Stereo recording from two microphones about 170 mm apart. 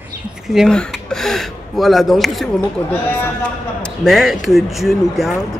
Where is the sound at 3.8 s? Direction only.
Centre (ahead or behind).